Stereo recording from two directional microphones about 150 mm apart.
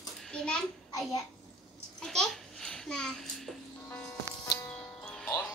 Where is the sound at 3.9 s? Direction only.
10° left (ahead or behind).